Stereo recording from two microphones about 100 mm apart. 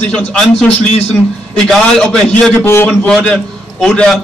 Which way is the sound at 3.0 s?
10° left (ahead or behind).